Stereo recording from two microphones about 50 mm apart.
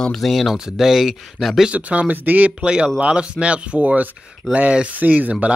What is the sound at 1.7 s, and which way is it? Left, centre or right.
Speech, right.